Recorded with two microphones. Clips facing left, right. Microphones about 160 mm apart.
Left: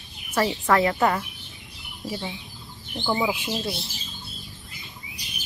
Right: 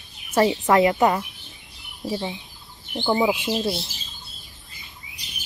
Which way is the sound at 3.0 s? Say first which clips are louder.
Right 4 dB; 15° right (ahead or behind).